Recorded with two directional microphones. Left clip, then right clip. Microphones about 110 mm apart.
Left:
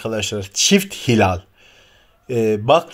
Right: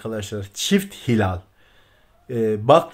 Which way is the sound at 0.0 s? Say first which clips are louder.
Left 6 dB; 15° left (ahead or behind).